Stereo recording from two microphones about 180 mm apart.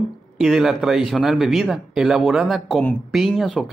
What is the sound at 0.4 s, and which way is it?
Speech, centre (ahead or behind).